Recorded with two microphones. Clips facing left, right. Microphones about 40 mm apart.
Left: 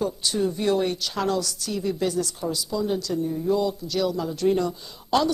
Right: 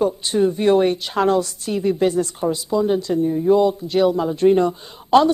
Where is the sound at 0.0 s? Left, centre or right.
Right.